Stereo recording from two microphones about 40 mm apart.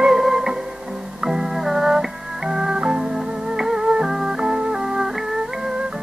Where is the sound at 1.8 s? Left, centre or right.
Centre.